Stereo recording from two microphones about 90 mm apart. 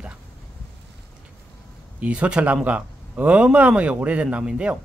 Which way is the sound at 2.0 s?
15° right (ahead or behind).